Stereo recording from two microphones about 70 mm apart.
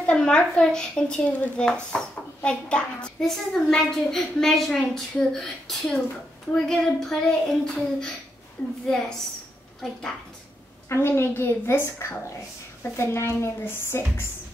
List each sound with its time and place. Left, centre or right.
0.0 s a child's voice: centre
10.9 s a woman's voice: left